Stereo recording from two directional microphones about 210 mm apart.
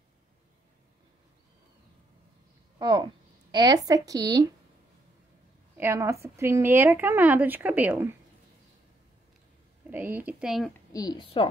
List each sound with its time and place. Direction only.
2.8 s speech: 20° right (ahead or behind)
5.8 s speech: 10° right (ahead or behind)
9.8 s speech: 10° right (ahead or behind)
10.9 s speech: 20° left (ahead or behind)